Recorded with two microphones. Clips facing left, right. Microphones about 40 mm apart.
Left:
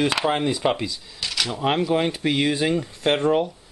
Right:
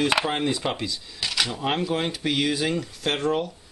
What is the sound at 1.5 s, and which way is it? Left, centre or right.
Speech, centre.